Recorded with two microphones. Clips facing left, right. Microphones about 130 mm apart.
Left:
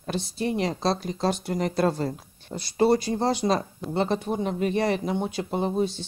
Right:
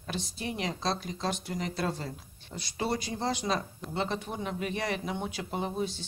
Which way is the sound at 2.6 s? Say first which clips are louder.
Left 11 dB; 35° left (ahead or behind).